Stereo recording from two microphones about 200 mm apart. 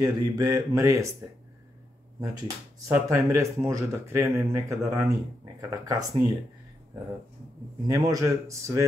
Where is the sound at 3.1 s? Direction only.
15° right (ahead or behind).